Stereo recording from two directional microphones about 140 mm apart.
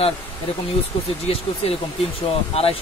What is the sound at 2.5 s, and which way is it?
Speech, 45° left (ahead or behind).